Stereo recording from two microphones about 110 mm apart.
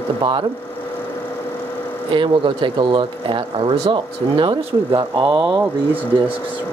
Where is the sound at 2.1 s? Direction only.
45° right (ahead or behind).